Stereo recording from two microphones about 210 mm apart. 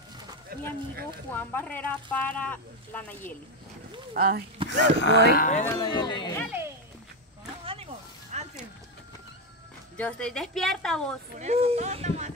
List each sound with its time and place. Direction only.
0.5 s a sound: 45° right (ahead or behind)
1.3 s speech: 10° left (ahead or behind)
4.1 s speech: 45° right (ahead or behind)
4.6 s speech: 55° left (ahead or behind)
5.3 s speech: 40° left (ahead or behind)
5.7 s speech: 20° left (ahead or behind)
7.6 s a sound: 30° right (ahead or behind)
9.9 s a woman's voice: 5° left (ahead or behind)
11.3 s speech: 30° right (ahead or behind)